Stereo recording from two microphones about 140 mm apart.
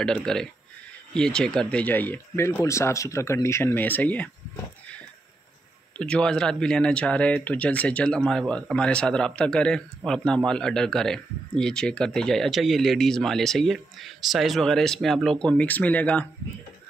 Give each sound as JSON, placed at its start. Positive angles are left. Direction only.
{"t": 0.0, "sound": "speech", "side_deg": 5}
{"t": 5.9, "sound": "speech", "side_deg": 5}